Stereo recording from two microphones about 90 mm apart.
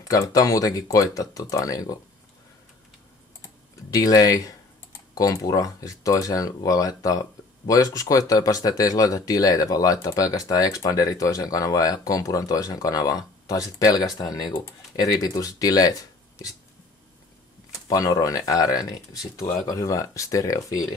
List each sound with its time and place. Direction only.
0.0 s speech: 40° left (ahead or behind)
3.9 s speech: 40° left (ahead or behind)
17.8 s speech: 40° left (ahead or behind)